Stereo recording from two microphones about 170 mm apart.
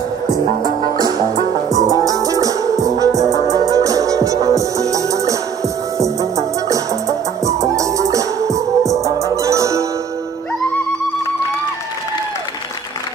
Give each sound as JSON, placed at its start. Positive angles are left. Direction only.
{"t": 1.7, "sound": "music", "side_deg": -20}